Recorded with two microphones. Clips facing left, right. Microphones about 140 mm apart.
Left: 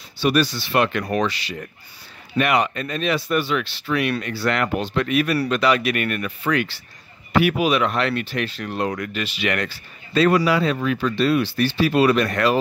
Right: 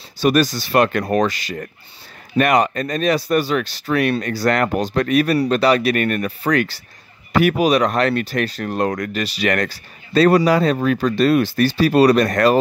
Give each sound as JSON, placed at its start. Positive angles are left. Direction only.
{"t": 0.2, "sound": "speech", "side_deg": -45}